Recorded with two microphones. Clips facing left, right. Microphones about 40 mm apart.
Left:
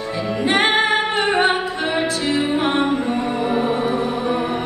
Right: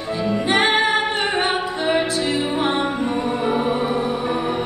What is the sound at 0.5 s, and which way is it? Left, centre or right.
Music, left.